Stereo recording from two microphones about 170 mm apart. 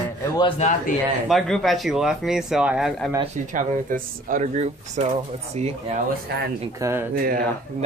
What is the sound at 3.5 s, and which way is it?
Speech, 50° right (ahead or behind).